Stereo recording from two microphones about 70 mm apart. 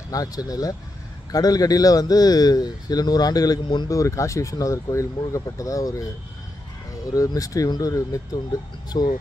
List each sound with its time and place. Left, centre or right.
0.1 s a man's voice: left
3.9 s speech: left
7.2 s speech: left
8.8 s speech: left